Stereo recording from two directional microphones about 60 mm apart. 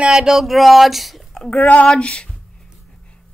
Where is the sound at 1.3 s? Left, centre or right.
Centre.